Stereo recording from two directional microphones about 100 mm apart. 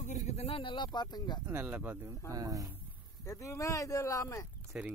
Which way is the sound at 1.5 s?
15° right (ahead or behind).